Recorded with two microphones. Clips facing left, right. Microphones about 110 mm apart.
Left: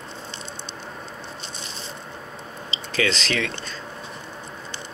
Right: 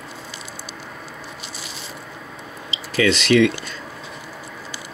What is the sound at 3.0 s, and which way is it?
Speech, 35° left (ahead or behind).